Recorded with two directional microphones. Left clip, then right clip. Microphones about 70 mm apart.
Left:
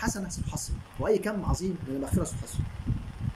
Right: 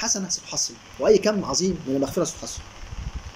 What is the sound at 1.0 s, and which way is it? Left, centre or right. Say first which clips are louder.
A man's voice: right 9 dB; centre.